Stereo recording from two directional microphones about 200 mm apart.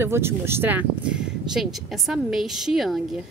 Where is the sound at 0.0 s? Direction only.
10° right (ahead or behind).